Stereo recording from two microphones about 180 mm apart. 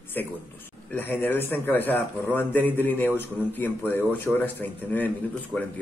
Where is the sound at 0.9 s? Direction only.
10° left (ahead or behind).